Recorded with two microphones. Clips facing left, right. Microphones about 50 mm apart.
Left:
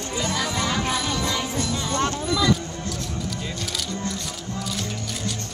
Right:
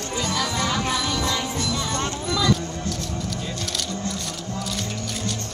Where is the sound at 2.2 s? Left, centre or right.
Left.